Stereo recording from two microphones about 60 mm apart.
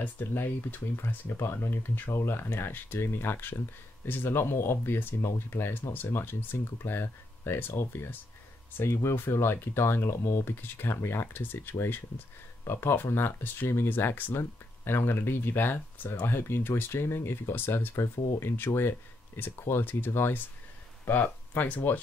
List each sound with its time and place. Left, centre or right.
0.0 s speech: left